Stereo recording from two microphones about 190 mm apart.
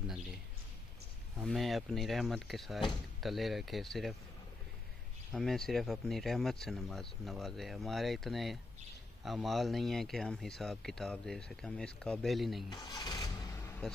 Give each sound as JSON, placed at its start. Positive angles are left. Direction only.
{"t": 0.0, "sound": "a sound", "side_deg": 0}
{"t": 1.4, "sound": "a man's voice", "side_deg": 0}
{"t": 5.3, "sound": "a man's voice", "side_deg": 0}
{"t": 12.6, "sound": "vehicle", "side_deg": 20}